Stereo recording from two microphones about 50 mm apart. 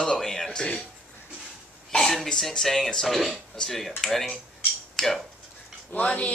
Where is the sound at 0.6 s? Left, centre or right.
Centre.